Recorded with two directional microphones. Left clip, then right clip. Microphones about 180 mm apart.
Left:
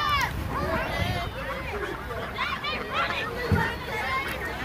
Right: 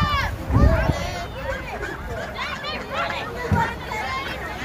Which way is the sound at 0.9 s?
50° right (ahead or behind).